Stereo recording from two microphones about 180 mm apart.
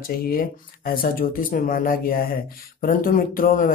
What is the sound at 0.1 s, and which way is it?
Speech, 55° left (ahead or behind).